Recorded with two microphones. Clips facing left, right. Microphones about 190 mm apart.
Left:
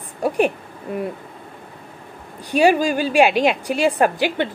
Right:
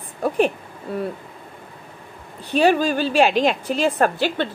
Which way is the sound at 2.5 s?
10° left (ahead or behind).